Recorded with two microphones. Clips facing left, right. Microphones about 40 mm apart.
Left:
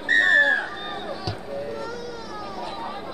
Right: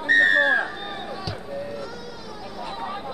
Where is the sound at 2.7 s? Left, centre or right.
Right.